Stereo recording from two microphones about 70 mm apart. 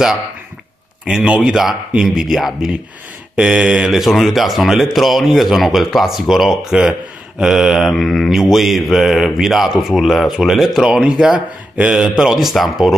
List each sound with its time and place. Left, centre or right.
1.0 s speech: centre
1.4 s speech: centre
4.0 s speech: centre; by 12.0 s right
12.0 s speech: centre